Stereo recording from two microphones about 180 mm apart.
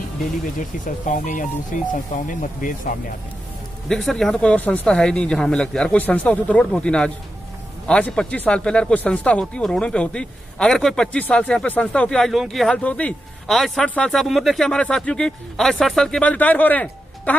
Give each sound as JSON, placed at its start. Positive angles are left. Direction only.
{"t": 0.6, "sound": "speech", "side_deg": 45}
{"t": 3.9, "sound": "speech", "side_deg": 0}